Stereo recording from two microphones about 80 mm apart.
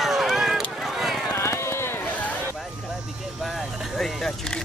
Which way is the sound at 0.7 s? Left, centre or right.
Centre.